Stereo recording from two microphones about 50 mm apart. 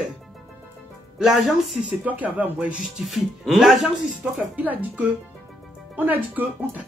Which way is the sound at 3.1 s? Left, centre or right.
Centre.